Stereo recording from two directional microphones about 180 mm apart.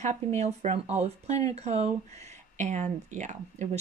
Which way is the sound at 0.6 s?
40° right (ahead or behind).